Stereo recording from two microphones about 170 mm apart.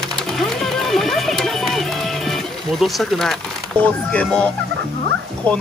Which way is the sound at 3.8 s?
5° left (ahead or behind).